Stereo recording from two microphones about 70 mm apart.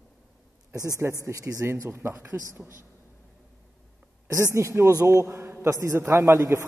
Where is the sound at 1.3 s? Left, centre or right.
Right.